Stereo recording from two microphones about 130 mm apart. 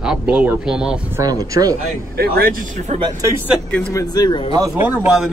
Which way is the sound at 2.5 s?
90° right.